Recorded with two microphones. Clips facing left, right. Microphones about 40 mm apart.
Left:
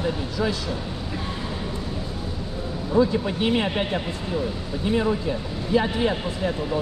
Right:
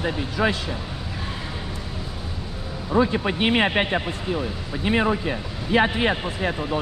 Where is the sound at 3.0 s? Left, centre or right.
Right.